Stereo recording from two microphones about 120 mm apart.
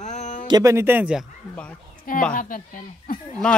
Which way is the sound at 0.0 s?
80° left.